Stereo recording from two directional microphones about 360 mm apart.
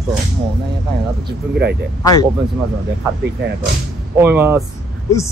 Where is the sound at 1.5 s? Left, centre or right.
Right.